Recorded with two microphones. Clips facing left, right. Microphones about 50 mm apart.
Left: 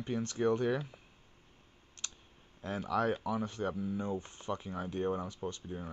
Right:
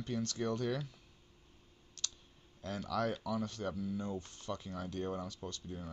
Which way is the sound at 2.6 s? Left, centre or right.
Left.